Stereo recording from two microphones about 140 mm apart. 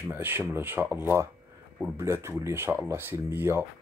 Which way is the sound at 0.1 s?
15° right (ahead or behind).